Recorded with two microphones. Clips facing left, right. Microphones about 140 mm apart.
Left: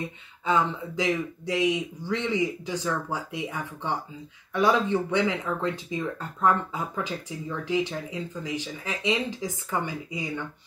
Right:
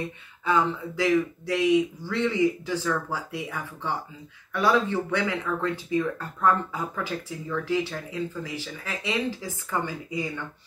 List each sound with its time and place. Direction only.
0.5 s speech: 20° left (ahead or behind)